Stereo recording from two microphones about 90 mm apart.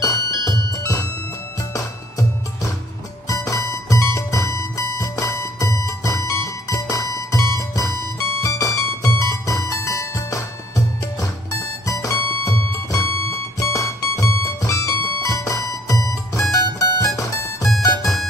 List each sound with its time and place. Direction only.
0.0 s music: 40° left (ahead or behind)
11.8 s music: 35° left (ahead or behind)
18.0 s music: centre (ahead or behind)